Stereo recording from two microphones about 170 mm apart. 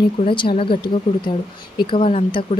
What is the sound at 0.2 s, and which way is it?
Speech, 30° left (ahead or behind).